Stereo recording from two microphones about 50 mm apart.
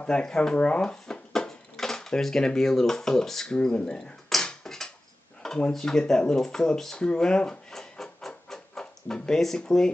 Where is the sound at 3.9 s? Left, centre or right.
Centre.